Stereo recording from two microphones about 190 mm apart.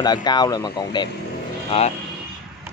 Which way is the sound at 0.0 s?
20° left (ahead or behind).